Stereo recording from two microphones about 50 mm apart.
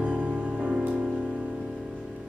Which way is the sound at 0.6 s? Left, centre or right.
Centre.